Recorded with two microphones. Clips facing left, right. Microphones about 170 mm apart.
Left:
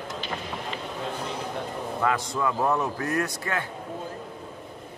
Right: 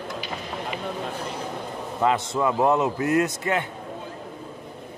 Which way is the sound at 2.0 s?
25° right (ahead or behind).